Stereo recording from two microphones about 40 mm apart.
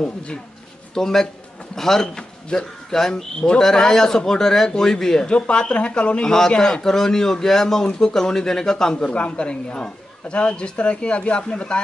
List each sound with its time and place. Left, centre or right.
0.0 s a man's voice: left
0.9 s speech: centre
5.3 s a man's voice: left
8.9 s a man's voice: left